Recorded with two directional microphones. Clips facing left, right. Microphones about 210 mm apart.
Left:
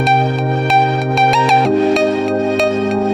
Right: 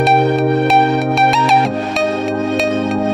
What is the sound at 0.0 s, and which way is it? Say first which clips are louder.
Music: right 3 dB; centre (ahead or behind).